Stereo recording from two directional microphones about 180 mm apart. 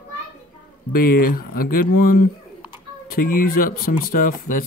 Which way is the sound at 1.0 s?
55° left (ahead or behind).